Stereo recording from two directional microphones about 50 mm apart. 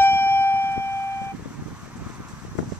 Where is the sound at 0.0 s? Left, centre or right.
Left.